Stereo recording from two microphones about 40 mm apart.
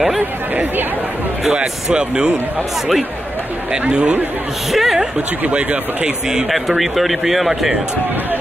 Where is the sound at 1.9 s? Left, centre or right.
Right.